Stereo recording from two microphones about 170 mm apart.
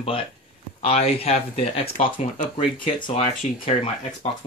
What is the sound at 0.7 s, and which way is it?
Speech, 35° left (ahead or behind).